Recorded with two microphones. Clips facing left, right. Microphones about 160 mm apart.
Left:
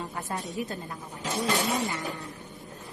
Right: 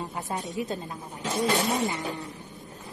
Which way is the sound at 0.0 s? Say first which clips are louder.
Right 1 dB; 20° right (ahead or behind).